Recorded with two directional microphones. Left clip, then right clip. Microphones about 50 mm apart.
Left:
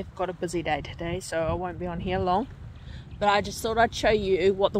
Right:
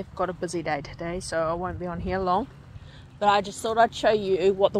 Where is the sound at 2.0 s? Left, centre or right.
Left.